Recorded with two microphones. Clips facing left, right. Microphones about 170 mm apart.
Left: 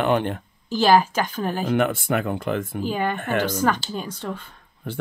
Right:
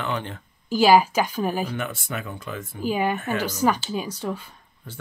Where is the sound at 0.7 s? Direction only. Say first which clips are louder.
Right 1 dB; 10° right (ahead or behind).